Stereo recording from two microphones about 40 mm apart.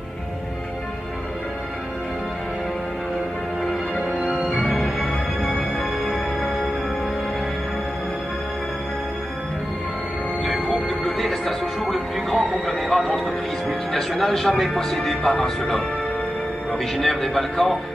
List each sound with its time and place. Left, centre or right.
5.0 s music: left
10.7 s music: centre
17.0 s a man's voice: centre